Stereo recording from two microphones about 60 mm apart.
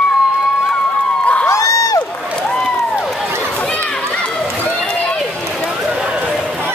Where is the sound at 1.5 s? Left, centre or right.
Left.